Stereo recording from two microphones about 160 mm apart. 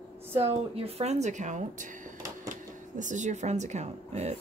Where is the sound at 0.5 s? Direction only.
40° right (ahead or behind).